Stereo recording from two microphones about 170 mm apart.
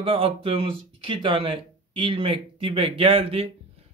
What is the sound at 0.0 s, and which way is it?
Speech, 35° right (ahead or behind).